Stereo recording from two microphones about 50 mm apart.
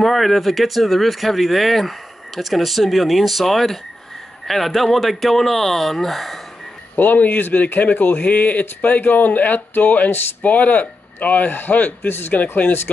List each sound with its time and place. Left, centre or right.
0.0 s speech: centre
7.0 s speech: left
12.1 s speech: left